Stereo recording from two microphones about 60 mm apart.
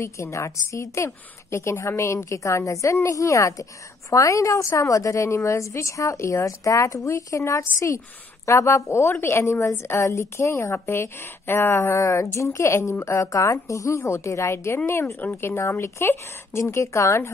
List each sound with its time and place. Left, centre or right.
0.0 s a woman's voice: left
9.0 s a woman's voice: left